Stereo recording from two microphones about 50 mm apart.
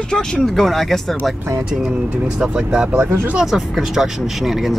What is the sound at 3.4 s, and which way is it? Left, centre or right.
Speech, centre.